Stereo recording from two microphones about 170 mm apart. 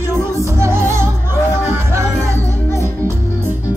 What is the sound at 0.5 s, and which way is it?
Music, 15° right (ahead or behind).